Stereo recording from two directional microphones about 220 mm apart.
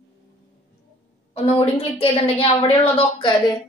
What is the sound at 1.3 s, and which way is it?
A woman's voice, 25° left (ahead or behind).